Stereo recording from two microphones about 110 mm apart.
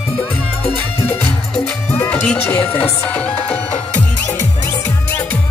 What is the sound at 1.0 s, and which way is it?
Music, 75° left (ahead or behind).